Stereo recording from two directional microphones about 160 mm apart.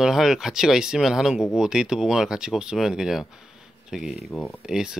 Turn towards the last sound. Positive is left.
turn(degrees=-5)  # may be behind; listen again after turning